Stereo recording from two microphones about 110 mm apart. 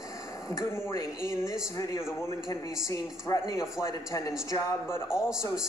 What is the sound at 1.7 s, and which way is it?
Speech, 30° left (ahead or behind).